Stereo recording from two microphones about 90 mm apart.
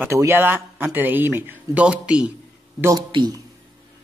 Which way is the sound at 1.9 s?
10° right (ahead or behind).